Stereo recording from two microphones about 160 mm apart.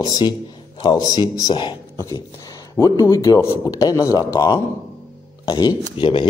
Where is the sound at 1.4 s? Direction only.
30° left (ahead or behind).